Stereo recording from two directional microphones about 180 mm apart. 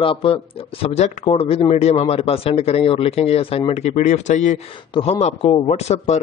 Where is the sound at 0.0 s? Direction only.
30° left (ahead or behind).